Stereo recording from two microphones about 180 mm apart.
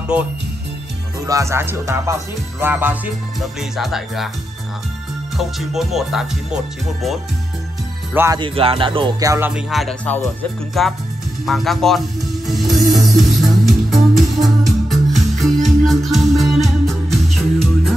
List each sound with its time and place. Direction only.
1.2 s music: 15° right (ahead or behind)
3.3 s speech: centre (ahead or behind)
5.4 s speech: centre (ahead or behind)
8.1 s speech: 15° right (ahead or behind)
8.4 s music: 30° right (ahead or behind)
9.5 s speech: centre (ahead or behind)
11.4 s music: centre (ahead or behind)